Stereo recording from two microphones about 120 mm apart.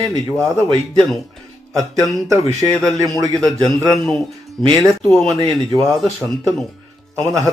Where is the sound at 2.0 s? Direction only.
25° right (ahead or behind).